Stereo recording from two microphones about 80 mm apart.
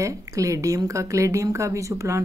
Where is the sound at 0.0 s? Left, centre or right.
Right.